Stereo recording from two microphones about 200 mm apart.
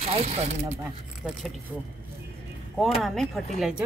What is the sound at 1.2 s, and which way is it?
Speech, 5° right (ahead or behind).